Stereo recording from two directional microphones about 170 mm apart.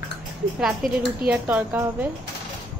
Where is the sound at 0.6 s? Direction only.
5° right (ahead or behind).